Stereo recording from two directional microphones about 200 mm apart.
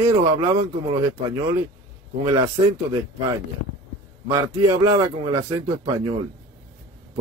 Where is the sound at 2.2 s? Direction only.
20° right (ahead or behind).